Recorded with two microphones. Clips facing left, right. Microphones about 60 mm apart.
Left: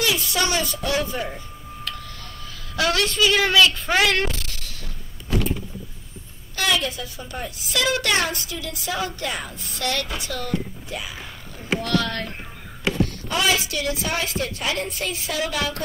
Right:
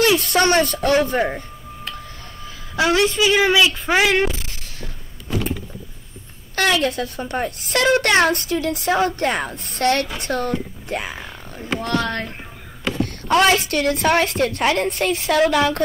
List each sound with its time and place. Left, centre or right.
0.0 s a woman's voice: right
2.7 s speech: right
6.5 s a woman's voice: right
13.0 s a woman's voice: right